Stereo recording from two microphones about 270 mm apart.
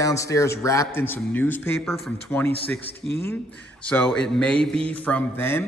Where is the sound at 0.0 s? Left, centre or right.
Centre.